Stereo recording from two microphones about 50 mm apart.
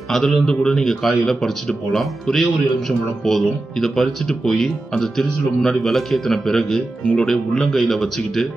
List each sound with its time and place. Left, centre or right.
0.1 s speech: centre